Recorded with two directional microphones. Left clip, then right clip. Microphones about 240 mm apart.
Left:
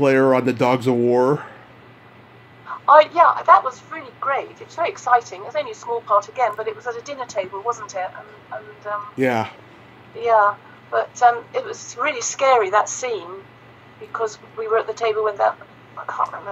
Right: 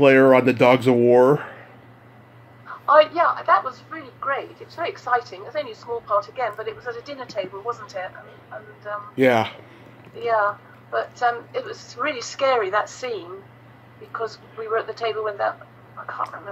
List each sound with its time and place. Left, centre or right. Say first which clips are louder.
0.0 s speech: right 2 dB; centre
2.9 s a woman's voice: left 4 dB; left
9.1 s speech: right 4 dB; centre
10.2 s a woman's voice: left 5 dB; left
16.1 s frog: left 5 dB; left